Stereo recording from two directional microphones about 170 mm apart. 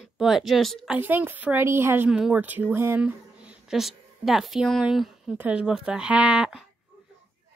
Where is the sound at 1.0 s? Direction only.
10° right (ahead or behind).